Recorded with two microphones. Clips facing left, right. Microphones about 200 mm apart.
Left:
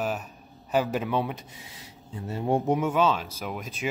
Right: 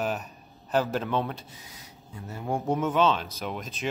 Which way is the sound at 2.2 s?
30° left (ahead or behind).